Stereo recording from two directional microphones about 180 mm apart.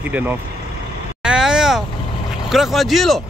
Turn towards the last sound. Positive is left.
turn(degrees=0)  # may be behind; listen again after turning